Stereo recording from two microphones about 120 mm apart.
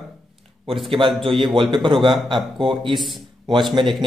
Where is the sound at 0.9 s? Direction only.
45° right (ahead or behind).